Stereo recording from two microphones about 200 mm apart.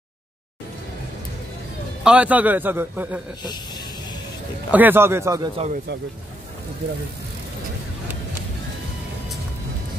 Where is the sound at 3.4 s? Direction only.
20° left (ahead or behind).